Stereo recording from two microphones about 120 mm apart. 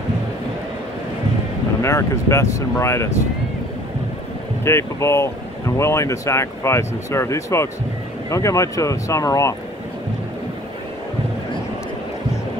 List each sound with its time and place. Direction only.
1.8 s speech: 25° left (ahead or behind)
4.6 s speech: 20° left (ahead or behind)